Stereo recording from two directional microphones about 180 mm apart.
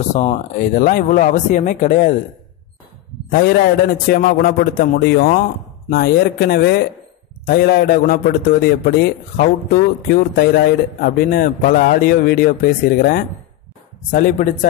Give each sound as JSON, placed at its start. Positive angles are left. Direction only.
{"t": 0.1, "sound": "speech", "side_deg": 35}
{"t": 0.6, "sound": "speech", "side_deg": 50}
{"t": 3.3, "sound": "a man's voice", "side_deg": 60}